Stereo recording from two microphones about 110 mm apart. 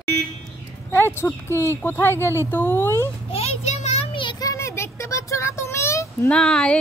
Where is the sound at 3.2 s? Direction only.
70° left (ahead or behind).